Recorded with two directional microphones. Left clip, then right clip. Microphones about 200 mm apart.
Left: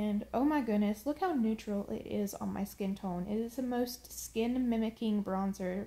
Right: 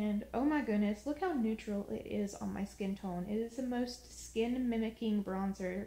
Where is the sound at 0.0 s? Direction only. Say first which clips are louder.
Left 3 dB; 45° left (ahead or behind).